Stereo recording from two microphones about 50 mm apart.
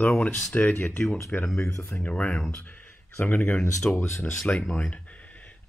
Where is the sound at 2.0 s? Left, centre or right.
Left.